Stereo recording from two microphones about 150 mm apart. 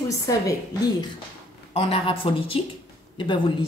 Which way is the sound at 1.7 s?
35° left (ahead or behind).